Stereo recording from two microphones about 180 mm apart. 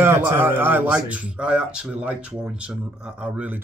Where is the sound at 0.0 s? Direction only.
15° right (ahead or behind).